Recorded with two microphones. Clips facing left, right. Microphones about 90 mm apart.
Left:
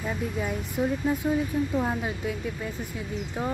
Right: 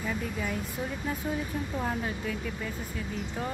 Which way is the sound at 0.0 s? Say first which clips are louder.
Left 3 dB; 20° left (ahead or behind).